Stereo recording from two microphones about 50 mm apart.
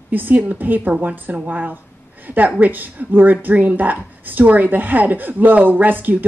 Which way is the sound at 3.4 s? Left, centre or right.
Right.